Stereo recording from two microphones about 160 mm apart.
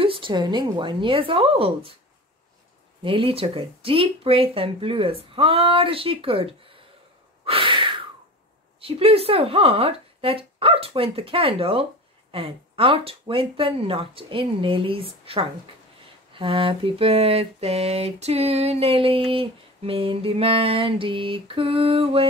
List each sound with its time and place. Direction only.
0.0 s speech: 35° right (ahead or behind)
3.0 s speech: 35° right (ahead or behind)
7.4 s a sound: 35° right (ahead or behind)
8.8 s speech: 35° right (ahead or behind)